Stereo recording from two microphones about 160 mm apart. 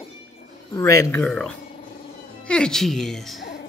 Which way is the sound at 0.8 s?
20° left (ahead or behind).